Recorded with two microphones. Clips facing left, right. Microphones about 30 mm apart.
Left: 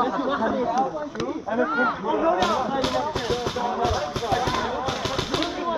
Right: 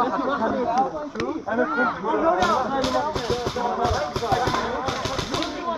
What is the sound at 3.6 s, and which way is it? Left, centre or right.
Music, centre.